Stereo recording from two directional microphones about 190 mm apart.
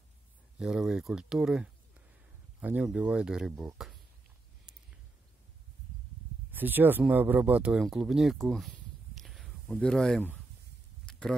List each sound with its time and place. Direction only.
0.6 s speech: 5° right (ahead or behind)
6.5 s speech: 10° right (ahead or behind)
11.1 s a sound: 5° left (ahead or behind)